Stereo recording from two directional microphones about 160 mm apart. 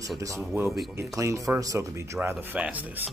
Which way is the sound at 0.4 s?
5° right (ahead or behind).